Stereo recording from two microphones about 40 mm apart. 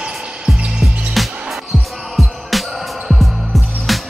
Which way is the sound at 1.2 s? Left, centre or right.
Centre.